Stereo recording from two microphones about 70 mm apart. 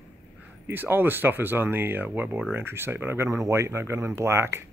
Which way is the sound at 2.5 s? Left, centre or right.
Right.